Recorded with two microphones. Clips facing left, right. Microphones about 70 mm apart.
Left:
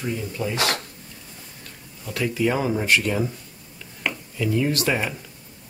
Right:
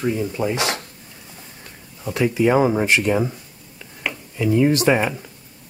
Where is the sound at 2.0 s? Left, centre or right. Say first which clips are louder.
Right 5 dB; right.